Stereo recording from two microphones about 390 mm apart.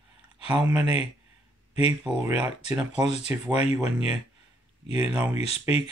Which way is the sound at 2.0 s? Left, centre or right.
Centre.